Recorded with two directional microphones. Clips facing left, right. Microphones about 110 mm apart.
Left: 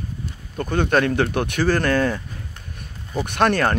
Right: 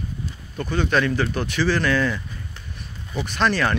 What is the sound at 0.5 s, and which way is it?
Speech, 50° left (ahead or behind).